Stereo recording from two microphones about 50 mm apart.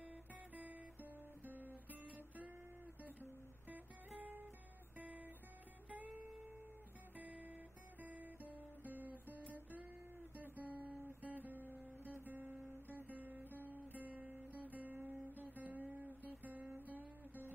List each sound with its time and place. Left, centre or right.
0.0 s guitar: right
3.6 s guitar: right
4.9 s music: right
5.9 s guitar: right
7.2 s music: right
8.0 s guitar: right
16.7 s music: right